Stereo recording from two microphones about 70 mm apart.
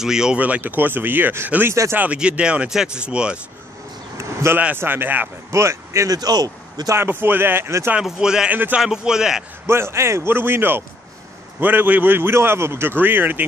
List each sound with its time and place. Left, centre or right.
0.0 s speech: centre
0.4 s a man's voice: right
2.1 s speech: centre
4.2 s a sound: right
4.7 s a man's voice: right
5.5 s speech: right
6.0 s a man's voice: right
7.0 s speech: right
8.0 s speech: centre
8.5 s a man's voice: right
8.8 s speech: centre
9.7 s a man's voice: right